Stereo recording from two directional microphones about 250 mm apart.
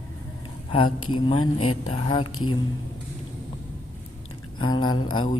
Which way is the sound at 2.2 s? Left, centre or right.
Left.